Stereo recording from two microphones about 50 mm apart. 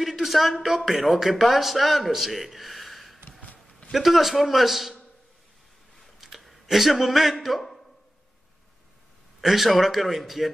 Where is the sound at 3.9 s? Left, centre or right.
Centre.